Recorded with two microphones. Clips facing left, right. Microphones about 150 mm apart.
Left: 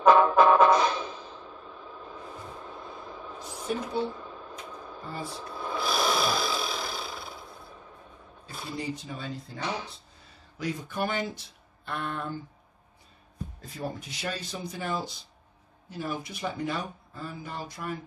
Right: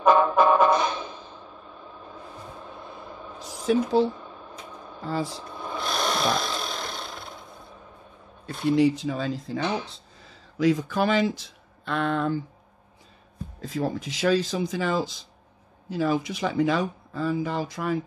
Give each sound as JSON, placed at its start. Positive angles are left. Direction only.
{"t": 0.0, "sound": "music", "side_deg": 0}
{"t": 3.7, "sound": "speech", "side_deg": -90}
{"t": 5.0, "sound": "speech", "side_deg": -90}
{"t": 5.5, "sound": "a sound", "side_deg": 0}
{"t": 8.6, "sound": "speech", "side_deg": -80}
{"t": 13.6, "sound": "speech", "side_deg": -90}